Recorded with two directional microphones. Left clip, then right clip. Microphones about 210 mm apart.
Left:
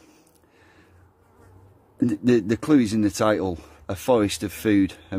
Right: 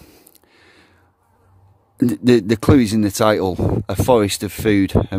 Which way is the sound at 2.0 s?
40° right (ahead or behind).